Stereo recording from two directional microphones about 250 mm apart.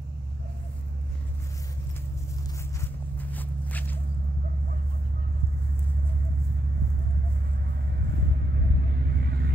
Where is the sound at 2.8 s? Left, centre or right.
Centre.